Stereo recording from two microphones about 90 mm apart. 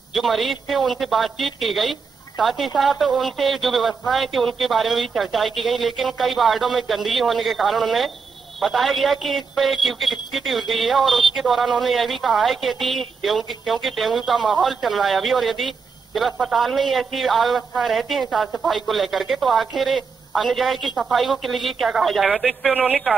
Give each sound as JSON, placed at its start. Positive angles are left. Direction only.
{"t": 0.1, "sound": "a man's voice", "side_deg": 0}